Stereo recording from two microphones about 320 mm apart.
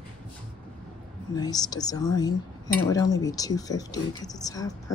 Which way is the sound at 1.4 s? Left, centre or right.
Centre.